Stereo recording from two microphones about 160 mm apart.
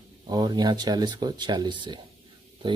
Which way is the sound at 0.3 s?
25° right (ahead or behind).